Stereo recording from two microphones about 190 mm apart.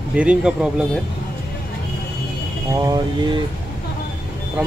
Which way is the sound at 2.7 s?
15° right (ahead or behind).